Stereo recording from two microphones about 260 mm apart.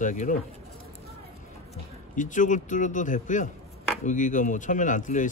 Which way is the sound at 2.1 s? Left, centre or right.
Left.